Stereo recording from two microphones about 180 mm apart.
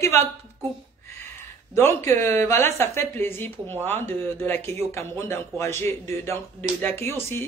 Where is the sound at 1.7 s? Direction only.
15° left (ahead or behind).